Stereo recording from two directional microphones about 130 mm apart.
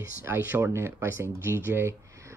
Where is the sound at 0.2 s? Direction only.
15° right (ahead or behind).